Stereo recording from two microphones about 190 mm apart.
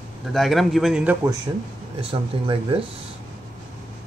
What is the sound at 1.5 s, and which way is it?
Speech, 15° right (ahead or behind).